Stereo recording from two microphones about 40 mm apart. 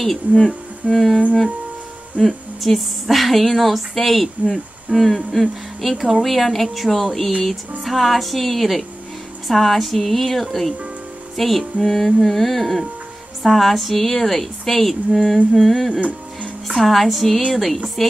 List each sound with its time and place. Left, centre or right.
0.0 s speech: centre
2.2 s speech: centre
15.9 s music: right
16.8 s speech: centre